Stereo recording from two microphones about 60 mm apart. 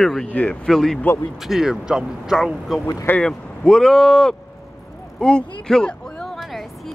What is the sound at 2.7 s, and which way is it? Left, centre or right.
Speech, centre.